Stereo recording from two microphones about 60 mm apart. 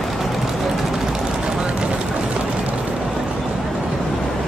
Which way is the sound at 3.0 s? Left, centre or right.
Centre.